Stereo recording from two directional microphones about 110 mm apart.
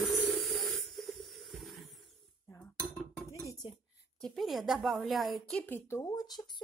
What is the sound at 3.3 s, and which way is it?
Dishes, 30° left (ahead or behind).